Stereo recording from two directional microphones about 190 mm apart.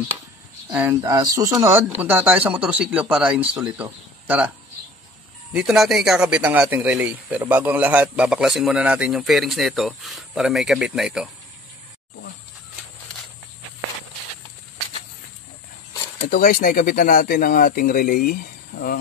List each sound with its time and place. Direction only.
0.7 s speech: 15° right (ahead or behind)
5.5 s speech: 5° right (ahead or behind)
16.2 s speech: 45° left (ahead or behind)